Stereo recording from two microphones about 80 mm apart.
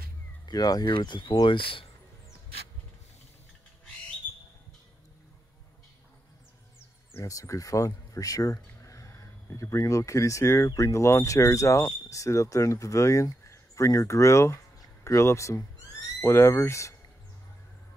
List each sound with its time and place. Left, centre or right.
0.5 s speech: left
0.9 s speech: left
4.2 s a sound: left
7.2 s speech: left
16.2 s speech: left